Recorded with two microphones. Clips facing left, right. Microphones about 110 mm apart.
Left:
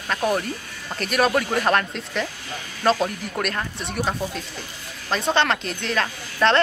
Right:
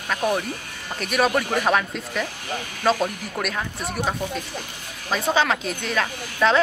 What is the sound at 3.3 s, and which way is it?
Speech, centre (ahead or behind).